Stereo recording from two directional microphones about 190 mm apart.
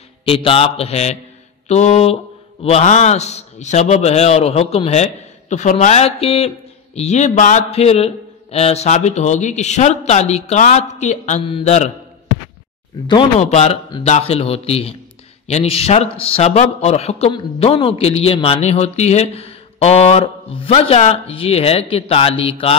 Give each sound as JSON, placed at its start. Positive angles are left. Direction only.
{"t": 0.2, "sound": "a man's voice", "side_deg": 30}
{"t": 13.0, "sound": "a man's voice", "side_deg": 25}